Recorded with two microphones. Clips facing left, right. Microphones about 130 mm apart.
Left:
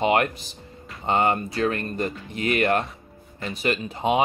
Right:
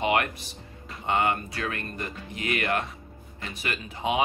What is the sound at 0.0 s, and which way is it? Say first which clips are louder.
Speech: left 4 dB; 30° left (ahead or behind).